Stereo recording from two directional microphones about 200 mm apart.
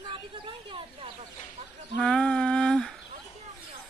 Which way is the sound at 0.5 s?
25° right (ahead or behind).